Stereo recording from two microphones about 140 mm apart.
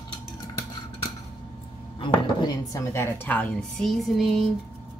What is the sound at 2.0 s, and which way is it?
Speech, 30° left (ahead or behind).